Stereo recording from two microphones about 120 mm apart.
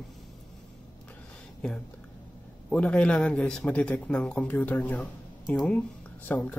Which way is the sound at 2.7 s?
10° left (ahead or behind).